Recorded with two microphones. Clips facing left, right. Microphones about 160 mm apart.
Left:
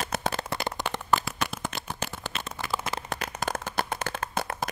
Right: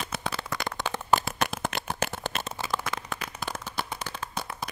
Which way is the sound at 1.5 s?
65° right (ahead or behind).